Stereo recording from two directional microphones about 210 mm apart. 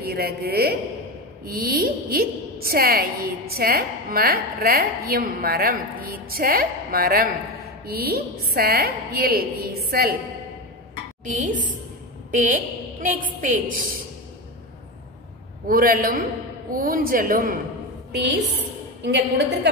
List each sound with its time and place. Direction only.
0.1 s a woman's voice: 45° right (ahead or behind)
11.3 s a woman's voice: 40° right (ahead or behind)
15.7 s a woman's voice: 45° right (ahead or behind)
18.1 s a woman's voice: 55° right (ahead or behind)